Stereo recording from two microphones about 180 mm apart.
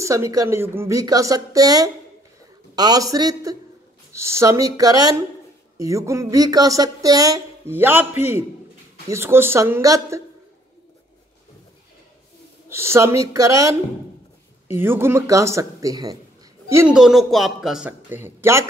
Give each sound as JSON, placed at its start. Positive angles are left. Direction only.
{"t": 0.0, "sound": "speech", "side_deg": -15}
{"t": 12.6, "sound": "speech", "side_deg": -15}
{"t": 14.8, "sound": "a woman's voice", "side_deg": -15}
{"t": 16.9, "sound": "speech", "side_deg": -5}